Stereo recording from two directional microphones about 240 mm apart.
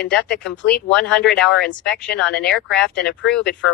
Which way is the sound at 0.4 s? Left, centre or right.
Centre.